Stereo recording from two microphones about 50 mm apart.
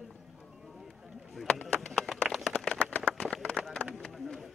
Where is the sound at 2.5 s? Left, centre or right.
Centre.